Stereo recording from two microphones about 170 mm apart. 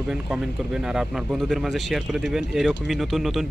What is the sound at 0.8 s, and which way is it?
Speech, 5° right (ahead or behind).